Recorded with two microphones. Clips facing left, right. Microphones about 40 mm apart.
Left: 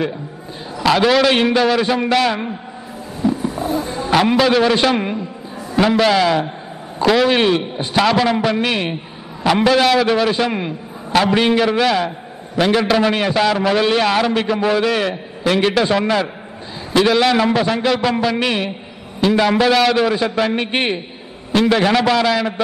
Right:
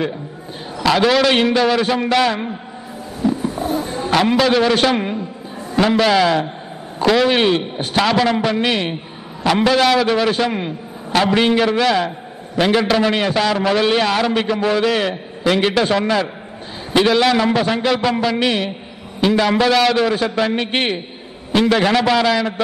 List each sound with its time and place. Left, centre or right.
0.8 s a man's voice: centre
3.3 s a sound: centre
4.1 s a man's voice: centre
21.6 s a man's voice: centre